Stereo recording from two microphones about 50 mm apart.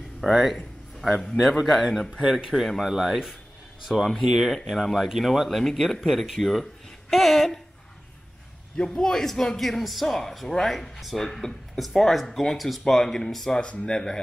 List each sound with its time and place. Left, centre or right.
0.2 s speech: centre
1.9 s speech: centre
8.7 s a man's voice: centre